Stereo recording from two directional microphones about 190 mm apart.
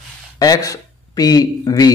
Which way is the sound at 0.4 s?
20° left (ahead or behind).